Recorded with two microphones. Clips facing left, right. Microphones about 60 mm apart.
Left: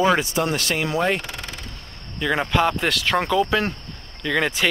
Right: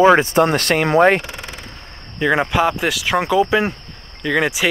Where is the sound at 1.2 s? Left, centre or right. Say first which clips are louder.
Right 3 dB; centre.